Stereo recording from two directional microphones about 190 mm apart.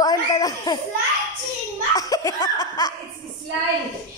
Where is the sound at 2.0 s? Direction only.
15° left (ahead or behind).